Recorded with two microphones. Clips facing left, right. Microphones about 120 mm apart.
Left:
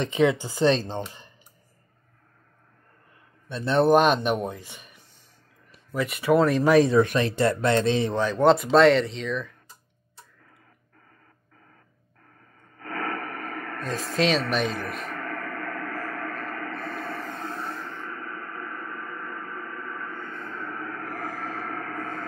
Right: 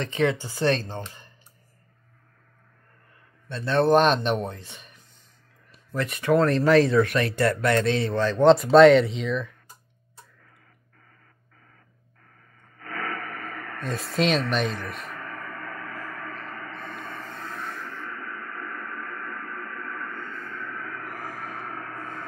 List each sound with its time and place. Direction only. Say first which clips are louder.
0.0 s speech: left 3 dB; 20° left (ahead or behind)
3.4 s speech: left 1 dB; 15° left (ahead or behind)
3.9 s speech: right 1 dB; 10° left (ahead or behind)
12.7 s a sound: left 2 dB; 35° left (ahead or behind)
14.1 s speech: even; centre (ahead or behind)
15.1 s gong: left 4 dB; 55° left (ahead or behind)
17.4 s a sound: left 2 dB; 30° left (ahead or behind)
19.0 s radio: even; 15° left (ahead or behind)
20.3 s a sound: left 2 dB; 25° left (ahead or behind)
21.5 s gong: left 3 dB; 60° left (ahead or behind)